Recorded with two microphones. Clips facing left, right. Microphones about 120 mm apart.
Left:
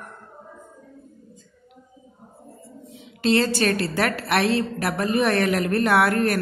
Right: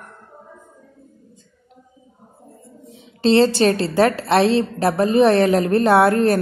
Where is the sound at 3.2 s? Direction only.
25° right (ahead or behind).